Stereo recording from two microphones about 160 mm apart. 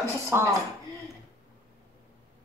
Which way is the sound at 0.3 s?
15° right (ahead or behind).